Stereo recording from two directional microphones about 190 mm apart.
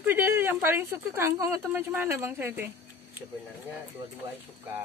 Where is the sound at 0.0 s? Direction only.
10° right (ahead or behind).